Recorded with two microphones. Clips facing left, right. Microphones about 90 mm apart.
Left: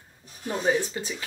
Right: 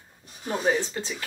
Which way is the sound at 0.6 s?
Centre (ahead or behind).